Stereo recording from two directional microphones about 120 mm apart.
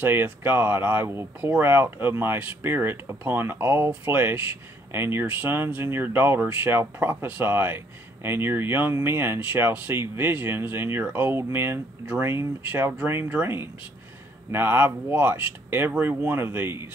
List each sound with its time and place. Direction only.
0.0 s speech: 15° right (ahead or behind)